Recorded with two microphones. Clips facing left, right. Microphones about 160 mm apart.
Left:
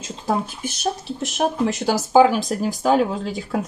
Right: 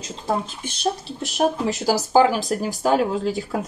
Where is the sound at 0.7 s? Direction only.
Centre (ahead or behind).